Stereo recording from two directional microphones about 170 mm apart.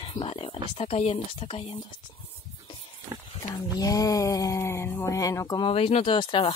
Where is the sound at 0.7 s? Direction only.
35° left (ahead or behind).